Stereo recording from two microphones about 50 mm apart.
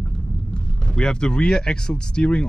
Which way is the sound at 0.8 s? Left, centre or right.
Centre.